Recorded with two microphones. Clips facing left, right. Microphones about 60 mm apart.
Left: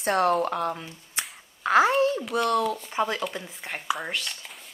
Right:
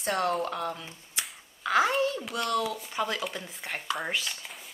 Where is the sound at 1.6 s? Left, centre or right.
Left.